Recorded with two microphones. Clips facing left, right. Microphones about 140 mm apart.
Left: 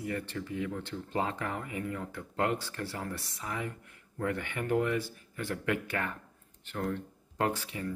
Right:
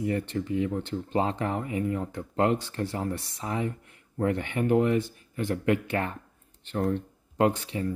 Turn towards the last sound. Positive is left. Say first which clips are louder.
# right 7 dB
turn(degrees=-30)  # may be behind; listen again after turning